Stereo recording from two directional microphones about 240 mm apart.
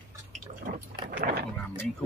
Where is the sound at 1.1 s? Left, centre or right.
Right.